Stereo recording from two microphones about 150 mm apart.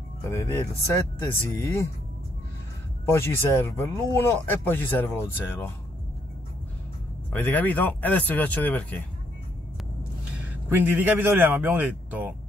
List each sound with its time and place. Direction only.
0.3 s speech: 15° left (ahead or behind)
3.1 s speech: 15° left (ahead or behind)
7.3 s speech: 10° left (ahead or behind)
10.7 s a man's voice: 10° right (ahead or behind)